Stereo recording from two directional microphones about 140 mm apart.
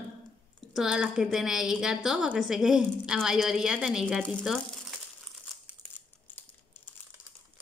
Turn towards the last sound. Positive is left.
turn(degrees=15)  # may be behind; listen again after turning